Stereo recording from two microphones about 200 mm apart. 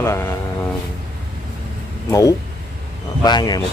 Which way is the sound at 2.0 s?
15° left (ahead or behind).